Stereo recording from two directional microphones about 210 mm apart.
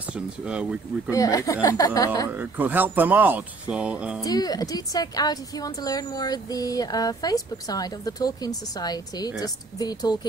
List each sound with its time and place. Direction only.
0.5 s speech: 5° right (ahead or behind)
1.1 s a woman's voice: 15° left (ahead or behind)
2.2 s speech: 10° right (ahead or behind)
4.2 s a woman's voice: 20° left (ahead or behind)